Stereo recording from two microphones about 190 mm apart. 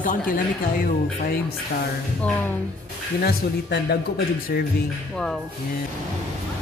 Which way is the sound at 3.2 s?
55° left (ahead or behind).